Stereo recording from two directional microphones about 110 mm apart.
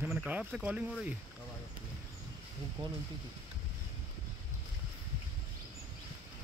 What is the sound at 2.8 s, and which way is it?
Speech, 45° right (ahead or behind).